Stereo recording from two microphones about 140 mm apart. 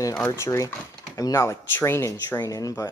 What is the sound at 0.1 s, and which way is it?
Speech, 15° left (ahead or behind).